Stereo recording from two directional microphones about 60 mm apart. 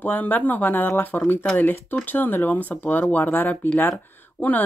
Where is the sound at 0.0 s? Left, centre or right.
Left.